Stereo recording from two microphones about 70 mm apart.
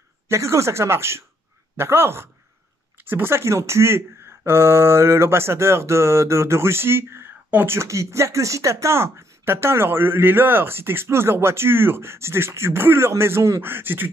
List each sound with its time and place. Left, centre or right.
0.3 s speech: right